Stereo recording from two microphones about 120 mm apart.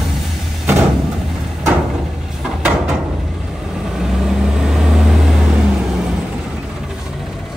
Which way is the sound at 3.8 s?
5° right (ahead or behind).